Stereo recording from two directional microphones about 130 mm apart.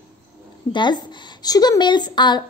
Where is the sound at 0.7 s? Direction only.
35° left (ahead or behind).